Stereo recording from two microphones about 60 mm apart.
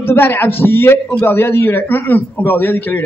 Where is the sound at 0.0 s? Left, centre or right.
Left.